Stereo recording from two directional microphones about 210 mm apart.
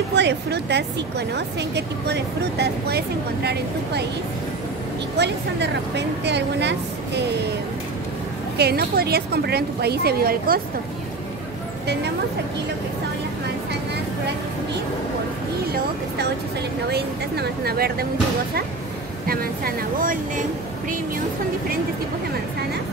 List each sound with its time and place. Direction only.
0.1 s speech: 55° right (ahead or behind)
5.1 s a woman's voice: 55° right (ahead or behind)
8.5 s speech: 50° right (ahead or behind)
16.9 s speech: 50° right (ahead or behind)
19.2 s speech: 45° right (ahead or behind)